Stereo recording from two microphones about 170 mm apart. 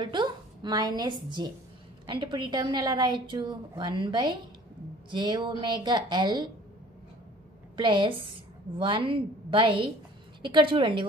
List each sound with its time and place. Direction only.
0.0 s a woman's voice: 25° right (ahead or behind)
7.7 s a woman's voice: 30° right (ahead or behind)